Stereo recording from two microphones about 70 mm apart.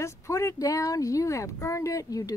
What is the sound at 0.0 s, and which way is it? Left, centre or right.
Speech, left.